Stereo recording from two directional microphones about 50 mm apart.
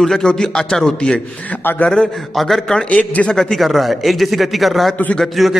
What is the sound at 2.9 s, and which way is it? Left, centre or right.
Speech, left.